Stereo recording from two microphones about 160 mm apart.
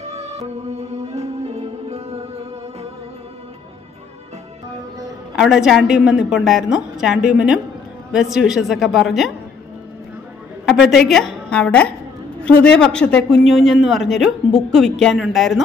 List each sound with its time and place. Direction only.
0.0 s music: 40° right (ahead or behind)
5.3 s a man's voice: 5° right (ahead or behind)
10.6 s a woman's voice: centre (ahead or behind)